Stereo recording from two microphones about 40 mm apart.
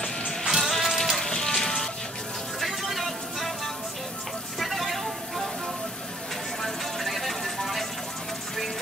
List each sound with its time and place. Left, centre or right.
0.5 s music: centre
4.6 s vehicle: centre
6.6 s music: centre